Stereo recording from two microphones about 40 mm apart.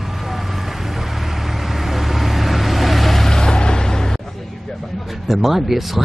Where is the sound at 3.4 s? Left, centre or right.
Centre.